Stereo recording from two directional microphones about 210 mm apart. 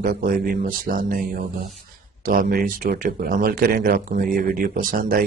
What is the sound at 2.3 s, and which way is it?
Speech, 40° right (ahead or behind).